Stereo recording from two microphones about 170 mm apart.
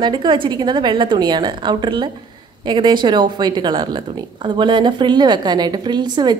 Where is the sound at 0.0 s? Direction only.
25° right (ahead or behind).